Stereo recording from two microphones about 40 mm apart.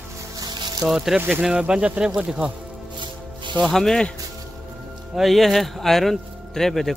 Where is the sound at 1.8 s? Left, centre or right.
Right.